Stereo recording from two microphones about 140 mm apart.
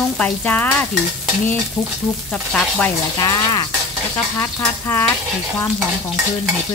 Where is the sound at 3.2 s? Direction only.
30° left (ahead or behind).